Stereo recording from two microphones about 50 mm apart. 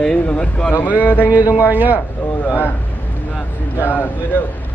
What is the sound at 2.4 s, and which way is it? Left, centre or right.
Speech, left.